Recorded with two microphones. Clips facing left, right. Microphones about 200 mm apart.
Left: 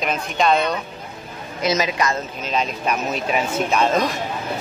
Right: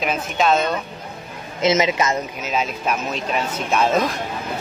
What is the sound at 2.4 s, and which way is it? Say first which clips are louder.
Speech: left 1 dB; 5° right (ahead or behind).